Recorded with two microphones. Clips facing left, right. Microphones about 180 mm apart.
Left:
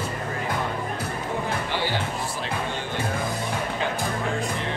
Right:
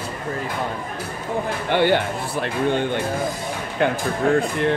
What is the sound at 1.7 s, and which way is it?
Music, 60° right (ahead or behind).